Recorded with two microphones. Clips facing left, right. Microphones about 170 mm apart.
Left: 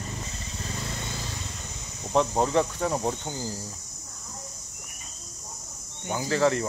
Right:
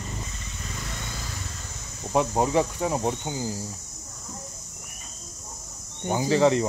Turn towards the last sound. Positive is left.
turn(degrees=-20)  # may be behind; listen again after turning